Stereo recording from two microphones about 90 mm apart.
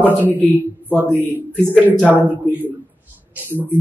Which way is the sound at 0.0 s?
20° right (ahead or behind).